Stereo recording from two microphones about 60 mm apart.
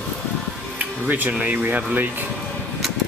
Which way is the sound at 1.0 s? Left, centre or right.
Right.